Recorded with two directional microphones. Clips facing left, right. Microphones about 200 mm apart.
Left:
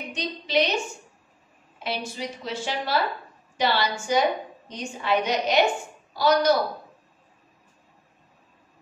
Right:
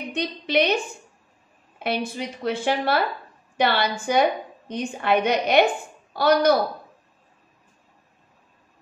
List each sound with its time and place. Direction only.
0.1 s a woman's voice: 55° right (ahead or behind)
1.8 s a woman's voice: 60° right (ahead or behind)